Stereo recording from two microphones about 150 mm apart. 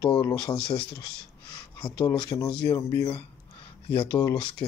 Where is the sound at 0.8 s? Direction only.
90° left.